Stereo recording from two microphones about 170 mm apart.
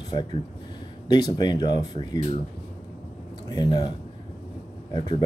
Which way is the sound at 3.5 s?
25° left (ahead or behind).